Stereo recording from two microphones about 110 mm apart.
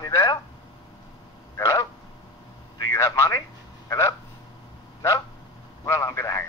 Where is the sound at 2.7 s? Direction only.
30° left (ahead or behind).